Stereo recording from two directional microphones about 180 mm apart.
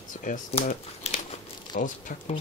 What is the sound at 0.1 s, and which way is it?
Speech, 45° left (ahead or behind).